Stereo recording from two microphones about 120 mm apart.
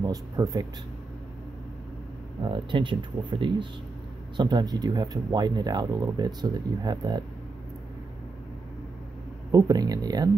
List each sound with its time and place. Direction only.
0.0 s speech: 30° right (ahead or behind)
2.4 s speech: 40° right (ahead or behind)
9.5 s speech: 35° right (ahead or behind)